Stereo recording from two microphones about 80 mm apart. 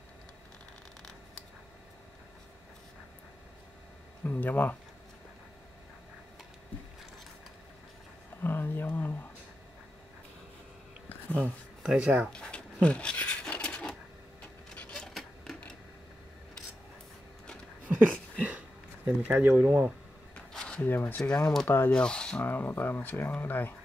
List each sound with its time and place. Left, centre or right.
4.2 s speech: left
8.4 s speech: left
11.8 s speech: centre
12.3 s a sound: centre
17.8 s a sound: right
19.0 s speech: centre
20.3 s a sound: centre
20.8 s speech: left
21.2 s speech: centre
21.6 s speech: left
21.9 s speech: centre
22.4 s speech: left